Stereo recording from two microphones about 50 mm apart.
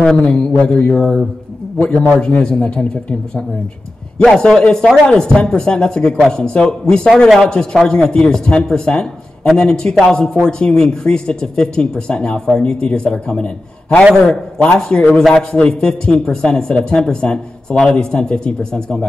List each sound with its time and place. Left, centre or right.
0.0 s speech: centre
0.6 s mantra: left
0.9 s speech: centre
15.1 s a man's voice: centre
15.5 s speech: centre